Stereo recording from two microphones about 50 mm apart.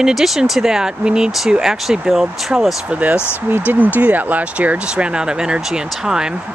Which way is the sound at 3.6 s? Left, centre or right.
Right.